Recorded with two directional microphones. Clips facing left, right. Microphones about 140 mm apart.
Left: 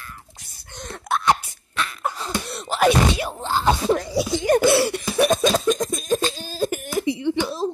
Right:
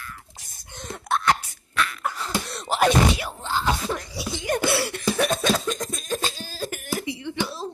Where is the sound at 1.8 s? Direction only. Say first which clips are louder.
Even; 25° left (ahead or behind).